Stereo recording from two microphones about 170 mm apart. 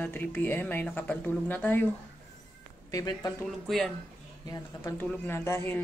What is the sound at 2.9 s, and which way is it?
Speech, 20° left (ahead or behind).